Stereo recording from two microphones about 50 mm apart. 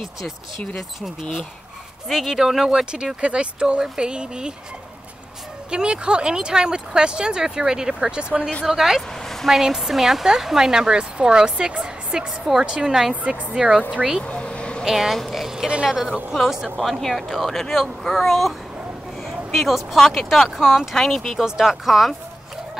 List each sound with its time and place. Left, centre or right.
2.0 s speech: centre
5.7 s speech: centre
8.6 s speech: centre
9.2 s a sound: centre
9.5 s speech: centre
11.8 s music: centre
12.6 s speech: centre
14.2 s a sound: left
14.9 s speech: centre
19.5 s speech: centre
20.9 s speech: centre
21.5 s speech: centre